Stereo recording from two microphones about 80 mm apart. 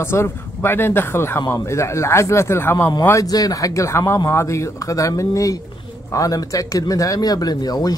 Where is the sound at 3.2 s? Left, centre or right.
Left.